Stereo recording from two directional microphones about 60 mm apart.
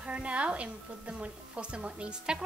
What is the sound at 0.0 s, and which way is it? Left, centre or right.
A woman's voice, centre.